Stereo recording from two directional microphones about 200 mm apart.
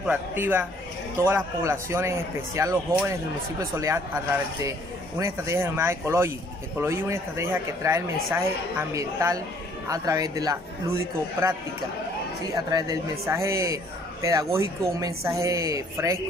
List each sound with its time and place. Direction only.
0.0 s speech: 10° right (ahead or behind)
5.2 s speech: 15° right (ahead or behind)
12.5 s speech: 15° right (ahead or behind)